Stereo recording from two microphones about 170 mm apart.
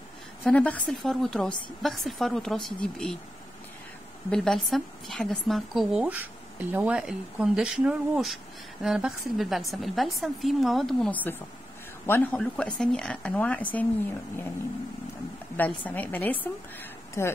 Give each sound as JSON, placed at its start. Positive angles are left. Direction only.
{"t": 0.4, "sound": "a woman's voice", "side_deg": 10}
{"t": 4.3, "sound": "a woman's voice", "side_deg": 0}
{"t": 15.5, "sound": "a woman's voice", "side_deg": 10}